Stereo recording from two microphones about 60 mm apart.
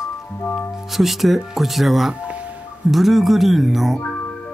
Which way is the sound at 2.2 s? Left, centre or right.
Right.